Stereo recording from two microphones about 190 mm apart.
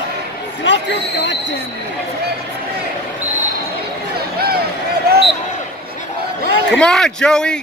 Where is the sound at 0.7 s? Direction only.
65° left (ahead or behind).